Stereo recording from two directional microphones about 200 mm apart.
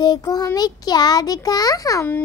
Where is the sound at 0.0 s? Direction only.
20° left (ahead or behind).